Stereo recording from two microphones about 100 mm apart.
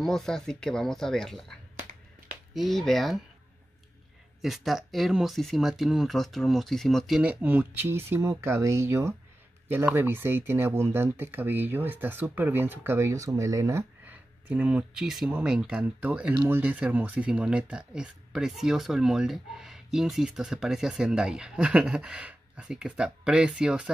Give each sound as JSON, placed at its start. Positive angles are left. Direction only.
{"t": 0.0, "sound": "speech", "side_deg": 5}
{"t": 4.4, "sound": "speech", "side_deg": 0}
{"t": 7.4, "sound": "speech", "side_deg": -20}
{"t": 14.0, "sound": "speech", "side_deg": -15}